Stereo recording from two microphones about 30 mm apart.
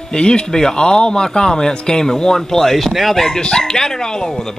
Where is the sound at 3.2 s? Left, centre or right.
Left.